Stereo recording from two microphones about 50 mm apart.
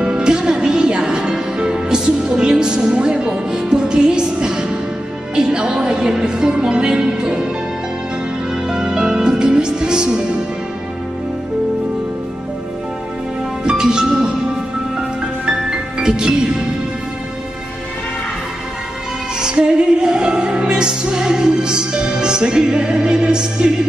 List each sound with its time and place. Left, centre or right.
0.0 s music: centre
8.6 s music: centre
13.7 s music: centre
19.4 s music: centre